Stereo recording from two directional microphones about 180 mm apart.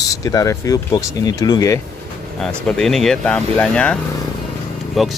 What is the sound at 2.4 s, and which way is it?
Speech, 5° left (ahead or behind).